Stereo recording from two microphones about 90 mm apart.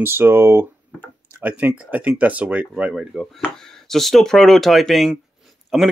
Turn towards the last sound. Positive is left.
turn(degrees=-5)  # may be behind; listen again after turning